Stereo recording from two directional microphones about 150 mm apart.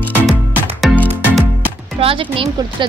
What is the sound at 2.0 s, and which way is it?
Speech, 40° right (ahead or behind).